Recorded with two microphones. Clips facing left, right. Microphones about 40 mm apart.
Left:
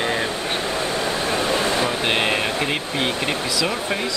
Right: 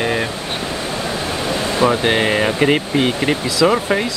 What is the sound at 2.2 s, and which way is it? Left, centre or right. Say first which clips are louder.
Speech: right 5 dB; right.